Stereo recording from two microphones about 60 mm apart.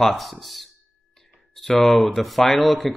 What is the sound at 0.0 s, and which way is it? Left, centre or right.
Speech, centre.